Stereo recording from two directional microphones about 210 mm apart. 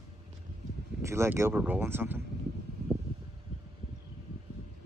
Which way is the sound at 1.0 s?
10° right (ahead or behind).